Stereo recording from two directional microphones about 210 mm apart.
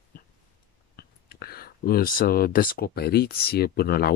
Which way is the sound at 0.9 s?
50° left (ahead or behind).